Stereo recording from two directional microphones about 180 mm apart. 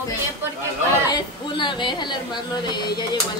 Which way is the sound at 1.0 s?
25° left (ahead or behind).